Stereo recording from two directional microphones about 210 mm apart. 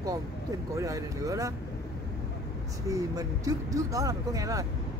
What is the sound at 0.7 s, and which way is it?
Speech, 15° right (ahead or behind).